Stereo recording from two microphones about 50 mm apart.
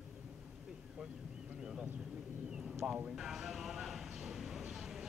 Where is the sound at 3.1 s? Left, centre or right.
Centre.